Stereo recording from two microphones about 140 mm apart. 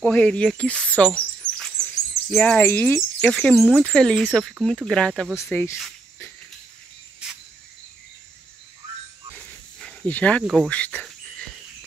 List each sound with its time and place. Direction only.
0.0 s speech: 10° left (ahead or behind)
1.4 s dog: 10° left (ahead or behind)
2.3 s speech: 10° left (ahead or behind)
5.3 s speech: 15° left (ahead or behind)
9.8 s cricket: 10° left (ahead or behind)
10.4 s speech: 5° right (ahead or behind)
10.7 s cricket: 10° left (ahead or behind)